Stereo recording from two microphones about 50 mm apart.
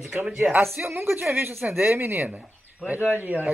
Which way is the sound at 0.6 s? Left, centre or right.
Right.